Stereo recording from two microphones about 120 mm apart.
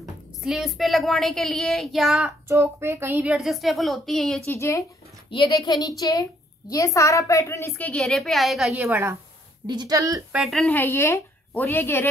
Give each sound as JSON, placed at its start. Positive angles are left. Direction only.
{"t": 0.4, "sound": "speech", "side_deg": 0}
{"t": 2.4, "sound": "speech", "side_deg": -20}
{"t": 3.3, "sound": "speech", "side_deg": 0}
{"t": 4.5, "sound": "a woman's voice", "side_deg": 25}
{"t": 5.5, "sound": "a woman's voice", "side_deg": 35}
{"t": 7.8, "sound": "speech", "side_deg": 5}
{"t": 8.8, "sound": "speech", "side_deg": -20}
{"t": 9.7, "sound": "speech", "side_deg": -35}
{"t": 10.3, "sound": "speech", "side_deg": 0}
{"t": 10.6, "sound": "a woman's voice", "side_deg": 15}